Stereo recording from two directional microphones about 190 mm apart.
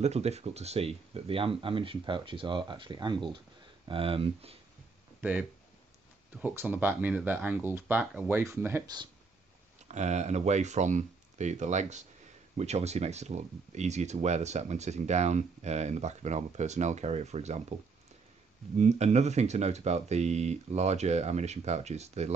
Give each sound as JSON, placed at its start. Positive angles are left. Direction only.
{"t": 0.0, "sound": "speech", "side_deg": -35}
{"t": 5.2, "sound": "speech", "side_deg": -5}
{"t": 9.8, "sound": "speech", "side_deg": -35}
{"t": 18.8, "sound": "speech", "side_deg": -35}